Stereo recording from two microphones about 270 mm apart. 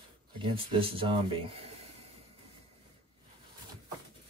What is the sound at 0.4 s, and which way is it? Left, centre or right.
Speech, centre.